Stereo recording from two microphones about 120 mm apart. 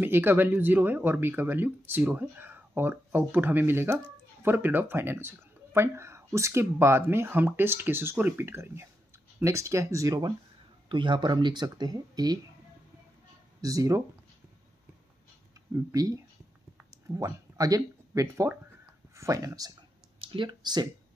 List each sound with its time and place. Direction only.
0.0 s speech: 20° right (ahead or behind)
10.9 s speech: 40° right (ahead or behind)
13.6 s speech: 30° right (ahead or behind)
15.9 s speech: 30° right (ahead or behind)
17.2 s speech: 30° right (ahead or behind)
20.2 s speech: 40° right (ahead or behind)